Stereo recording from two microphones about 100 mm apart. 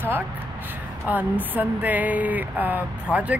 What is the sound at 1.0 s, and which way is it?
Speech, 15° right (ahead or behind).